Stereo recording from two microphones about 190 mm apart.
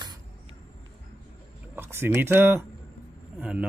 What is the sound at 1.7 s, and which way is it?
Speech, 10° right (ahead or behind).